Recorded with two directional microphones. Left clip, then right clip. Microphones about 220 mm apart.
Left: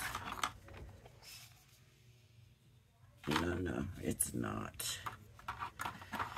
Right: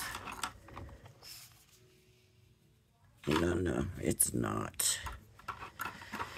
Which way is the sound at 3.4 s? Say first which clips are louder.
Right 6 dB; 40° right (ahead or behind).